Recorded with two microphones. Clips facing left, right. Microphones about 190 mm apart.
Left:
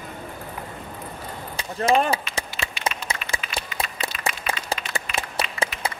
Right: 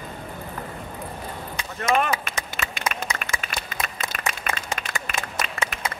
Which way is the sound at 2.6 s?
50° right (ahead or behind).